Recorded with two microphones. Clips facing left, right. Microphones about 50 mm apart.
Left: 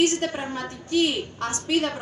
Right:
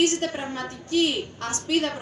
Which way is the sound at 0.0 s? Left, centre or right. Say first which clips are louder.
Left 1 dB; left.